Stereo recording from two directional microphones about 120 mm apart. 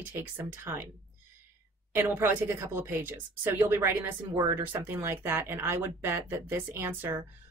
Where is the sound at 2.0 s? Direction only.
20° right (ahead or behind).